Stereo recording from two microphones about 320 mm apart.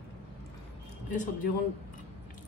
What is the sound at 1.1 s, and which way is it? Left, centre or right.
Speech, left.